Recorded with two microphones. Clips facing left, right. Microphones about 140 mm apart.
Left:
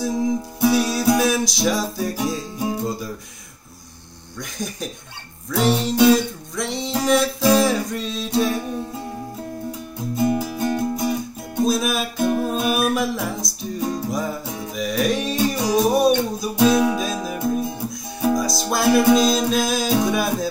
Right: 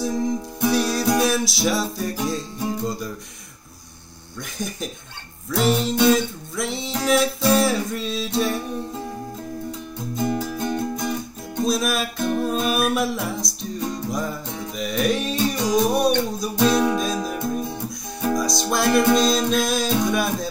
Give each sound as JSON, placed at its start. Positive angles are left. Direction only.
{"t": 0.0, "sound": "music", "side_deg": 0}
{"t": 4.4, "sound": "music", "side_deg": 0}
{"t": 9.7, "sound": "music", "side_deg": 10}